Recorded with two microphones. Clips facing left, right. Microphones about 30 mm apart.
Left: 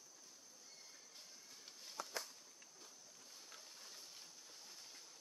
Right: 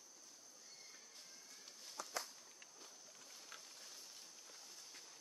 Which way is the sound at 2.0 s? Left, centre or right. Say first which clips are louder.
Left 2 dB; left.